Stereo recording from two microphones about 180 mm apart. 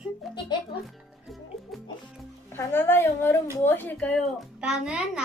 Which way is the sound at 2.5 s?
10° left (ahead or behind).